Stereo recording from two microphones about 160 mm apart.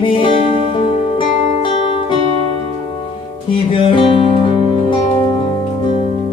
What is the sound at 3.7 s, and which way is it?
Music, 35° left (ahead or behind).